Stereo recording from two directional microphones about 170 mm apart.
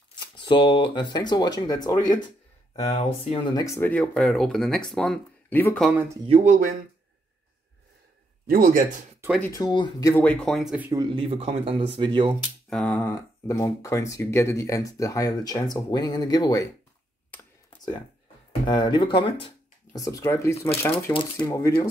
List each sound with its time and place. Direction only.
0.4 s speech: 30° left (ahead or behind)
2.7 s speech: 35° left (ahead or behind); by 5.9 s 10° left (ahead or behind)
5.9 s speech: 10° right (ahead or behind)
6.2 s speech: 35° right (ahead or behind)
8.5 s a man's voice: 55° right (ahead or behind)
9.5 s speech: 25° left (ahead or behind)
10.2 s speech: 5° left (ahead or behind)
10.9 s speech: 25° right (ahead or behind)
12.6 s speech: 5° left (ahead or behind); by 16.6 s 20° left (ahead or behind)
18.7 s speech: 25° left (ahead or behind)
20.0 s speech: 20° left (ahead or behind)
20.9 s speech: 30° left (ahead or behind)
21.5 s speech: 15° left (ahead or behind)